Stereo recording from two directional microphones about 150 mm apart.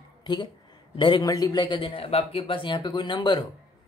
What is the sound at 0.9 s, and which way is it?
Speech, 30° left (ahead or behind).